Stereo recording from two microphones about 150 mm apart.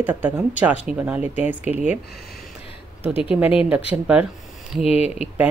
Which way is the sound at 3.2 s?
10° right (ahead or behind).